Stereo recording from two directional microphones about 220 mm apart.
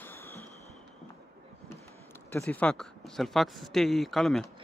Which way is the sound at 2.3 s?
5° left (ahead or behind).